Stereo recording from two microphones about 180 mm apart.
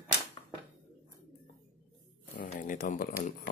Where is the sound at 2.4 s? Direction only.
50° left (ahead or behind).